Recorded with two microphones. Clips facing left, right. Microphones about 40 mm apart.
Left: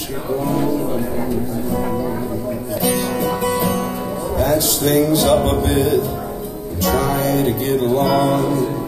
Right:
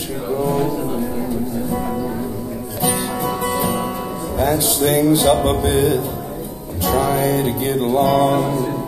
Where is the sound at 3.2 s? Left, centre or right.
Centre.